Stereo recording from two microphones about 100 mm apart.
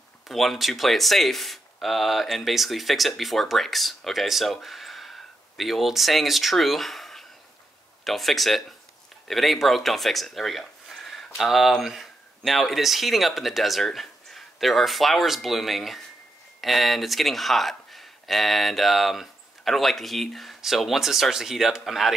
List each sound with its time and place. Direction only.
0.3 s speech: centre (ahead or behind)